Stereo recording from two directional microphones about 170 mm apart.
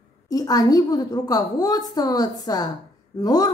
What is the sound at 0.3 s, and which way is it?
A woman's voice, 20° left (ahead or behind).